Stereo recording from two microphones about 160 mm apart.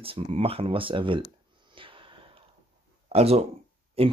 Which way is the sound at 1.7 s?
30° right (ahead or behind).